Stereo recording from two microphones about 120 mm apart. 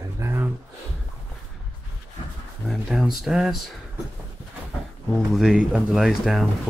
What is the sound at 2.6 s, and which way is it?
Speech, centre (ahead or behind).